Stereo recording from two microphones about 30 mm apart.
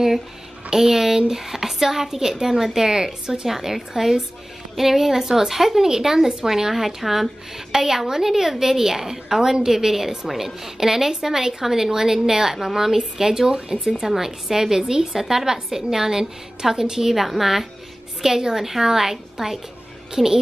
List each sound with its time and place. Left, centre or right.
0.7 s a woman's voice: centre
3.4 s a woman's voice: centre
13.8 s a woman's voice: centre
17.1 s a woman's voice: centre